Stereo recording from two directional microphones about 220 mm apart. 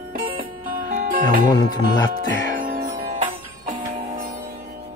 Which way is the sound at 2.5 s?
40° right (ahead or behind).